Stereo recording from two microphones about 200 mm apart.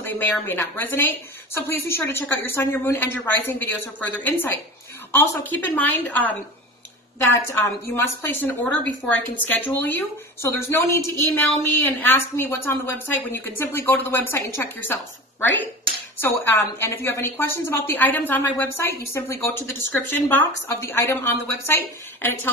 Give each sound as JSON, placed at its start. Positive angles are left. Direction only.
{"t": 0.0, "sound": "a woman's voice", "side_deg": 10}
{"t": 16.2, "sound": "a woman's voice", "side_deg": 10}